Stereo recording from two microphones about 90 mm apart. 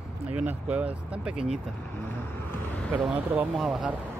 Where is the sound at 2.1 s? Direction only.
20° left (ahead or behind).